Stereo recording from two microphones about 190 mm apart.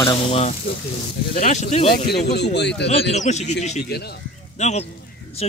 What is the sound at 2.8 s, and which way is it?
Speech, 35° left (ahead or behind).